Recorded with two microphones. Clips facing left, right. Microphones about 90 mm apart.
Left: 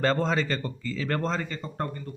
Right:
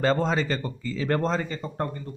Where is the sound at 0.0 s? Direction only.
15° right (ahead or behind).